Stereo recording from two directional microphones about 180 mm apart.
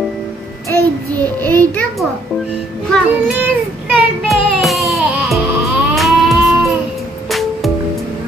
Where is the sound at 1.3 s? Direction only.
10° left (ahead or behind).